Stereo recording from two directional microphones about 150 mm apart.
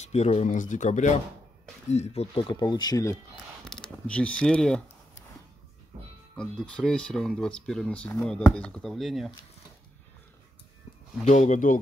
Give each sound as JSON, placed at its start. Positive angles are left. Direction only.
{"t": 0.0, "sound": "speech", "side_deg": 45}
{"t": 3.6, "sound": "speech", "side_deg": 5}
{"t": 6.3, "sound": "speech", "side_deg": 5}
{"t": 11.2, "sound": "speech", "side_deg": 50}